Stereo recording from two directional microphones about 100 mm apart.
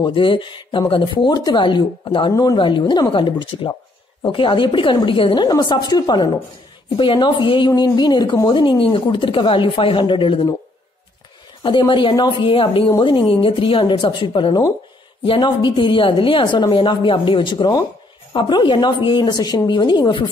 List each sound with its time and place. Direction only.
0.0 s a woman's voice: 60° left (ahead or behind)
11.6 s a woman's voice: 55° left (ahead or behind)